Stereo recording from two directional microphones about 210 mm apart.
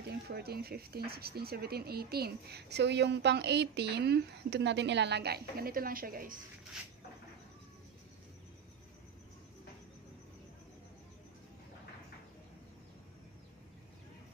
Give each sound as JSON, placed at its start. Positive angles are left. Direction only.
{"t": 0.0, "sound": "speech", "side_deg": -50}